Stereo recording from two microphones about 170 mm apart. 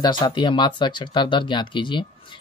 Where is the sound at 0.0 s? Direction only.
25° left (ahead or behind).